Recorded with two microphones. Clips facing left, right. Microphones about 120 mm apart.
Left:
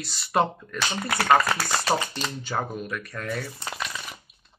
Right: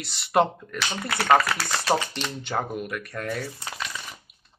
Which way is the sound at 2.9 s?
55° right (ahead or behind).